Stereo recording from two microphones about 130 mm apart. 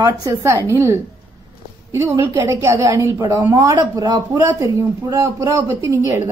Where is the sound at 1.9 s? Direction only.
20° right (ahead or behind).